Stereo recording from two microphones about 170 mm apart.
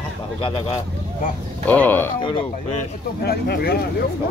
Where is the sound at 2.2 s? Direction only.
30° left (ahead or behind).